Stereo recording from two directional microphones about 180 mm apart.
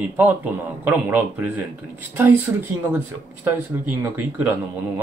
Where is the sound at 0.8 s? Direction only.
10° right (ahead or behind).